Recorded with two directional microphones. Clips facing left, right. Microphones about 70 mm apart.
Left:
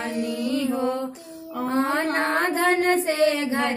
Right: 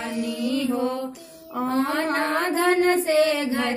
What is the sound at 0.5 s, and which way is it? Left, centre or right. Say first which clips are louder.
Mantra: even; left.